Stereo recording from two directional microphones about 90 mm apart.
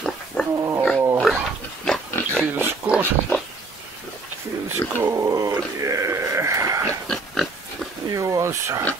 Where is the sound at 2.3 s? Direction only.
20° right (ahead or behind).